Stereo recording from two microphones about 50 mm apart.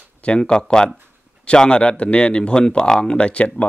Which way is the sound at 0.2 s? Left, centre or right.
Centre.